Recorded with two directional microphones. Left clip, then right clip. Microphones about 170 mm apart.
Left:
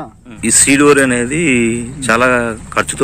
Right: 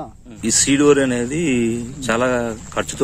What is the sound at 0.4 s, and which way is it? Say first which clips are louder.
Speech: left 6 dB; 25° right (ahead or behind).